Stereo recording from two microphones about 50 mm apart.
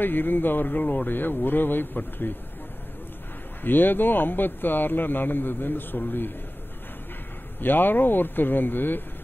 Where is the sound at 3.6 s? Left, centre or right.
Left.